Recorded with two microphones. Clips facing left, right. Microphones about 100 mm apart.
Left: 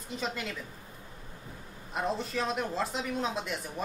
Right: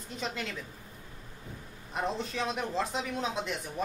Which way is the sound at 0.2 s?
Centre (ahead or behind).